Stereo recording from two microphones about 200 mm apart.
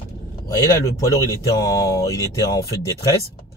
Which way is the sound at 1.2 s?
15° left (ahead or behind).